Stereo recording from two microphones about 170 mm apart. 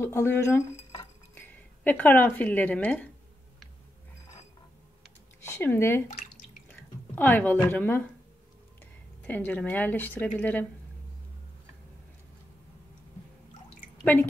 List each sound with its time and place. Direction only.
0.0 s a woman's voice: 15° left (ahead or behind)
0.9 s a sound: 10° left (ahead or behind)
5.5 s a woman's voice: 15° left (ahead or behind)
9.2 s a woman's voice: 10° left (ahead or behind)